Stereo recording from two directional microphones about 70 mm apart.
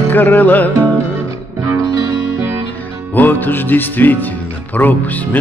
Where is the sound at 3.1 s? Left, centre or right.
Left.